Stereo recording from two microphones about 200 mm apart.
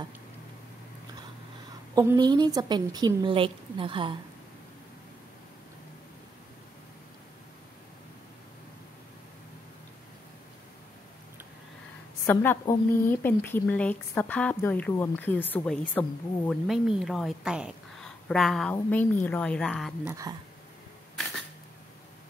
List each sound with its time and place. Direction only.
2.0 s a woman's voice: 20° right (ahead or behind)
12.3 s a woman's voice: 10° left (ahead or behind)